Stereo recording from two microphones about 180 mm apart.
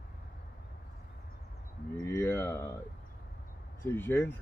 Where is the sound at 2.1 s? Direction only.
15° left (ahead or behind).